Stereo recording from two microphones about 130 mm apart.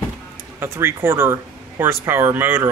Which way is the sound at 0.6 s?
20° right (ahead or behind).